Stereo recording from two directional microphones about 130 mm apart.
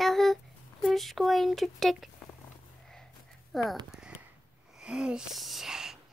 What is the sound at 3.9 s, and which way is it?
Sniff, 5° right (ahead or behind).